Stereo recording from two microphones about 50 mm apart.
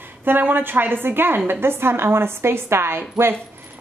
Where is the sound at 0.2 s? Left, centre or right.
Right.